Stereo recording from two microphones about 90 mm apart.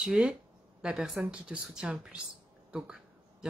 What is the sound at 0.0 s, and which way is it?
Speech, 10° right (ahead or behind).